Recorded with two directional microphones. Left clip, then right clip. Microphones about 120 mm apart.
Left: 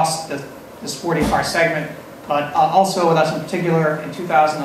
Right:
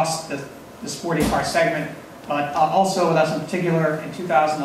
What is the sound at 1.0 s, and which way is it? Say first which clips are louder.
Speech: left 3 dB; 25° left (ahead or behind).